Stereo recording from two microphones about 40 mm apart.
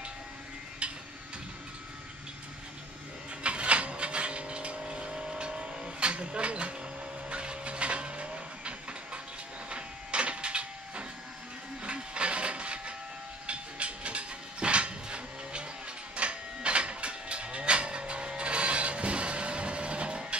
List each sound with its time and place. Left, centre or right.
0.8 s tick-tock: right
3.4 s a sound: right
7.2 s vehicle: right
9.7 s a sound: right
11.8 s train: right
16.2 s livestock: right